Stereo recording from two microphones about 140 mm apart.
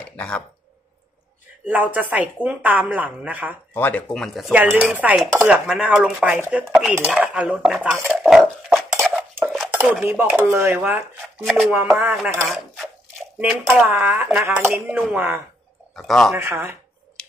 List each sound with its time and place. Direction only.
0.1 s a sound: 10° left (ahead or behind)
1.7 s a woman's voice: 10° right (ahead or behind)
3.7 s a woman's voice: 15° left (ahead or behind); by 6.6 s 10° right (ahead or behind)
6.7 s a woman's voice: centre (ahead or behind)
8.1 s dog: 5° right (ahead or behind)
9.1 s cutlery: 10° right (ahead or behind)
10.0 s a woman's voice: 15° right (ahead or behind)
12.4 s speech: centre (ahead or behind)
13.4 s a woman's voice: 10° right (ahead or behind)
15.9 s speech: 5° left (ahead or behind)
16.3 s a woman's voice: 20° right (ahead or behind)
17.2 s a sound: 5° left (ahead or behind)